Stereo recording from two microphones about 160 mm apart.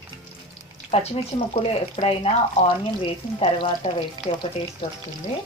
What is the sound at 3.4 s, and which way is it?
Speech, 35° left (ahead or behind).